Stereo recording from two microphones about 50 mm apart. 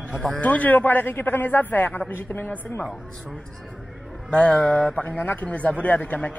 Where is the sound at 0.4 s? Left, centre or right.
Left.